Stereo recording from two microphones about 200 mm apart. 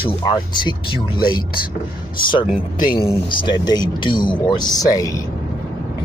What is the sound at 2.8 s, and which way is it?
Speech, 25° left (ahead or behind).